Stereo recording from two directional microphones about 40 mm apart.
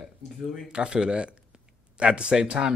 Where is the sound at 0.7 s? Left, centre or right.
Right.